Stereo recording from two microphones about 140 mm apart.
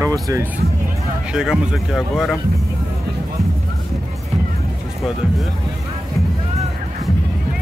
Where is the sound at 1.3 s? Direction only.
5° right (ahead or behind).